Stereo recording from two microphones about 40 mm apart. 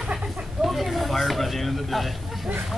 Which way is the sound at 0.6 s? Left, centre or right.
Centre.